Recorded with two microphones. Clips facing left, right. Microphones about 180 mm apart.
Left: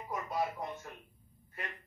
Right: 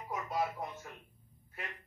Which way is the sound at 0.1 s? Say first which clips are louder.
Even; centre (ahead or behind).